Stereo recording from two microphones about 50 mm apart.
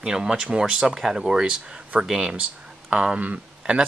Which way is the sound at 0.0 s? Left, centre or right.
Centre.